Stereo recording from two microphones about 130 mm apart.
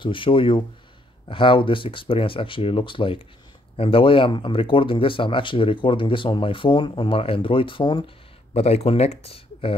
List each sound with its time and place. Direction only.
0.0 s speech: 40° left (ahead or behind)
8.5 s speech: 50° left (ahead or behind)